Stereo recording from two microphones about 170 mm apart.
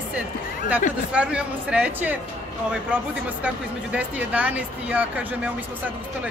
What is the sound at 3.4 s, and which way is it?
Speech, 5° right (ahead or behind).